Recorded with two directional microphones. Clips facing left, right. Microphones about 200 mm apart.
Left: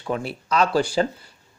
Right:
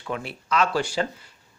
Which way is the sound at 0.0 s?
35° left (ahead or behind).